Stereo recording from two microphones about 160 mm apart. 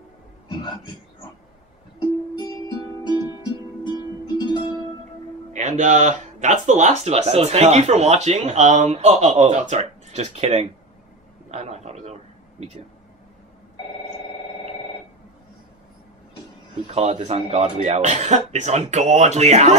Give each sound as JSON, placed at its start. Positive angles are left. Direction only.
{"t": 2.4, "sound": "music", "side_deg": 25}
{"t": 5.5, "sound": "speech", "side_deg": -50}
{"t": 11.5, "sound": "a sound", "side_deg": -45}
{"t": 16.8, "sound": "speech", "side_deg": -40}